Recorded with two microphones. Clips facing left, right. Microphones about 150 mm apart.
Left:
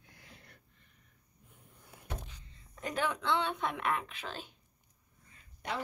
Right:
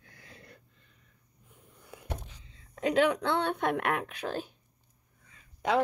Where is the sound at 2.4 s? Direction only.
80° right.